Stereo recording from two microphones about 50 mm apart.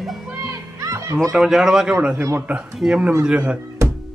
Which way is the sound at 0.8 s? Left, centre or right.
Right.